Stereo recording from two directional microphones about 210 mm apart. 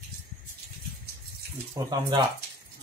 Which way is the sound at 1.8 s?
20° right (ahead or behind).